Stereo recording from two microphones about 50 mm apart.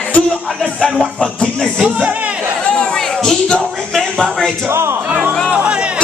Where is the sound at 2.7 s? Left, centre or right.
Centre.